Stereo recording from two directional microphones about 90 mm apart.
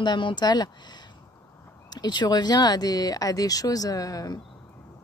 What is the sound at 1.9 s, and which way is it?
Speech, 50° left (ahead or behind).